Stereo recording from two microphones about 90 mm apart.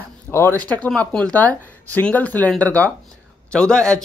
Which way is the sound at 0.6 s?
15° left (ahead or behind).